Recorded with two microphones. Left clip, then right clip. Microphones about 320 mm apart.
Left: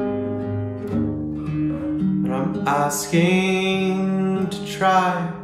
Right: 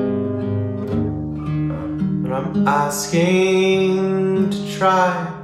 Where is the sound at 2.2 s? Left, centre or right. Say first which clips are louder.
Right 2 dB; centre.